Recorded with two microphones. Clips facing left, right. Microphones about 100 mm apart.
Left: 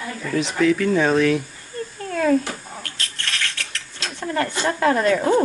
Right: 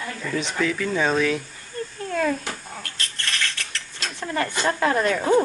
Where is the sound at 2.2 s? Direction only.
5° left (ahead or behind).